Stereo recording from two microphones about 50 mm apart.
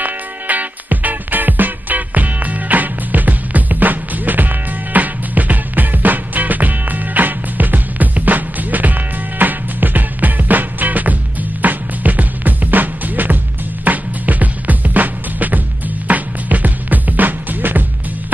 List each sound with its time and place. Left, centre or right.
0.0 s music: right